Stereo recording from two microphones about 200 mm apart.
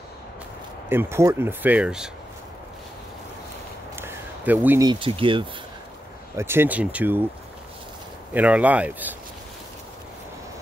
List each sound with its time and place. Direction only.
0.8 s speech: 10° right (ahead or behind)
3.9 s a sound: 10° right (ahead or behind)
4.8 s speech: 25° right (ahead or behind)
6.3 s speech: 10° right (ahead or behind)
8.3 s speech: 5° right (ahead or behind)